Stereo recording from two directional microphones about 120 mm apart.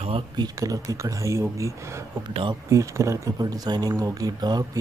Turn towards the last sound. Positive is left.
turn(degrees=-35)  # may be behind; listen again after turning